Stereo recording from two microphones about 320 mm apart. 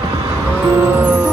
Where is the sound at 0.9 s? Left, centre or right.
Centre.